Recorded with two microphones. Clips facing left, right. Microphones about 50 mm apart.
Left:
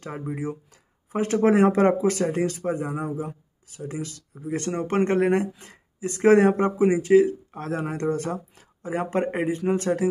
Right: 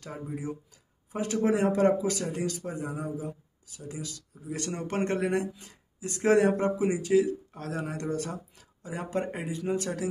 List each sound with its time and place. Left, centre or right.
0.0 s speech: left